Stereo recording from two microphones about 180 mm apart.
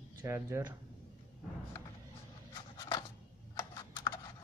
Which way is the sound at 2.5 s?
20° left (ahead or behind).